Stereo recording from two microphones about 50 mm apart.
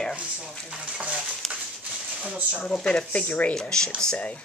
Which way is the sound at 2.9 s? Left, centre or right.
Centre.